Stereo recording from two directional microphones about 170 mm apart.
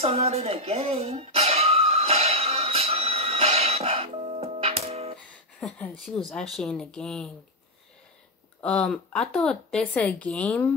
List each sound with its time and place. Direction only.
0.0 s a sound: 35° right (ahead or behind)
5.6 s a woman's voice: centre (ahead or behind)
8.6 s a woman's voice: 5° left (ahead or behind)